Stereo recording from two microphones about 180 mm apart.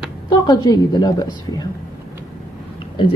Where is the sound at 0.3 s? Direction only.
20° left (ahead or behind).